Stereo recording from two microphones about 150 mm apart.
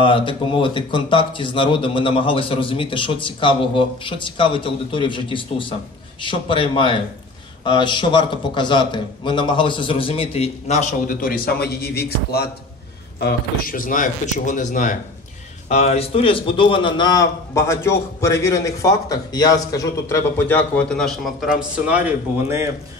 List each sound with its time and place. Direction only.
0.0 s speech: 35° left (ahead or behind); by 12.4 s 90° left
13.2 s speech: 80° left; by 15.0 s 60° left (ahead or behind)
15.7 s a man's voice: 45° left (ahead or behind); by 22.0 s 10° right (ahead or behind)